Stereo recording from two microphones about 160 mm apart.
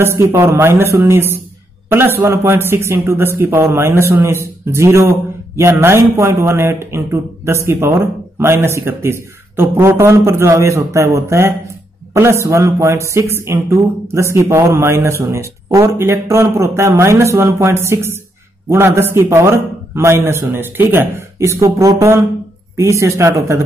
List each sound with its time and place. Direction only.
0.0 s a man's voice: 15° right (ahead or behind)